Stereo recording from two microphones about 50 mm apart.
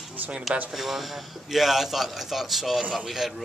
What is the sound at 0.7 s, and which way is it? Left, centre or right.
Speech, centre.